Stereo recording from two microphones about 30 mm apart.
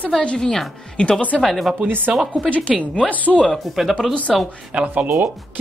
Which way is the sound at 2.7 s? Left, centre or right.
Left.